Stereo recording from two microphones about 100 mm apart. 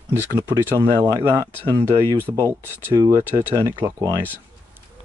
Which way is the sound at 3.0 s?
35° right (ahead or behind).